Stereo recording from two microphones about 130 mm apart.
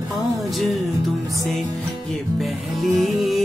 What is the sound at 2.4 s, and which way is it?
Music, centre (ahead or behind).